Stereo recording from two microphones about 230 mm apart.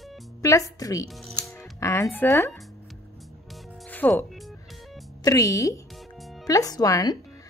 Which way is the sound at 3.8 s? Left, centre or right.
Centre.